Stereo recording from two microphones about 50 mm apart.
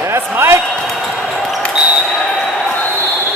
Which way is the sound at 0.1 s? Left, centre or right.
Right.